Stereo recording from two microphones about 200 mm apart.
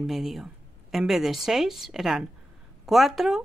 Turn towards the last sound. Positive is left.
turn(degrees=0)  # may be behind; listen again after turning